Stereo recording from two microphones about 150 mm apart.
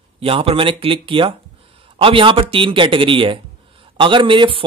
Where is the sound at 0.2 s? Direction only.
40° right (ahead or behind).